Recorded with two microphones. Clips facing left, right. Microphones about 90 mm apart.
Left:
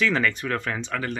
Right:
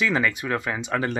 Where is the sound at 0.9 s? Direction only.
25° right (ahead or behind).